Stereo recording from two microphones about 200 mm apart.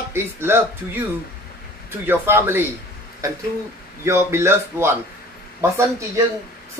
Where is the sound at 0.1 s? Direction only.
10° right (ahead or behind).